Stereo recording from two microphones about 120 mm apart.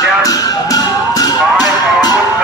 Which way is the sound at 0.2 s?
30° left (ahead or behind).